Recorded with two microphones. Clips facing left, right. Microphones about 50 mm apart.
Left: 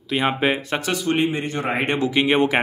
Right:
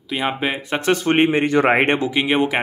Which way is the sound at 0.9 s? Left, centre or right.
Right.